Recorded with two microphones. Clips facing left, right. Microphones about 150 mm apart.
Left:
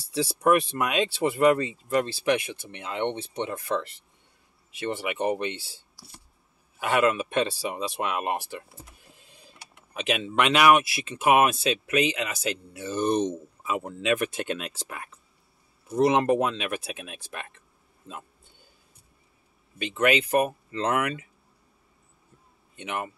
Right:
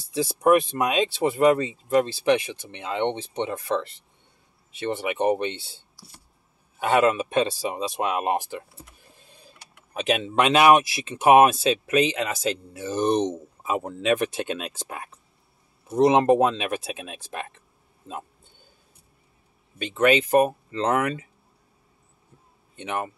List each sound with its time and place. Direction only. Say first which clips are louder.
0.1 s speech: right 3 dB; 20° right (ahead or behind)
6.8 s speech: right 3 dB; 30° right (ahead or behind)
9.9 s speech: right 3 dB; 35° right (ahead or behind)
19.9 s speech: right 4 dB; 30° right (ahead or behind)
22.8 s speech: right 3 dB; 35° right (ahead or behind)